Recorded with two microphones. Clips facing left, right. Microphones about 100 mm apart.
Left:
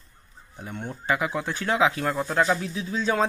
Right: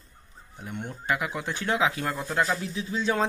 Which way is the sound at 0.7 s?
5° left (ahead or behind).